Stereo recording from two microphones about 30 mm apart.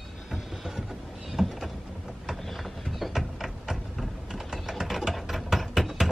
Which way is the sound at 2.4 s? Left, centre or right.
Centre.